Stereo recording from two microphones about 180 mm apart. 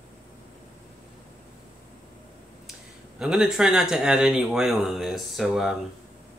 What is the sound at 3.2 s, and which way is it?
Speech, 5° right (ahead or behind).